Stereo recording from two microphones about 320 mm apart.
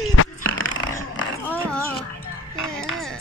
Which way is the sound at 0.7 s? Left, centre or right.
Centre.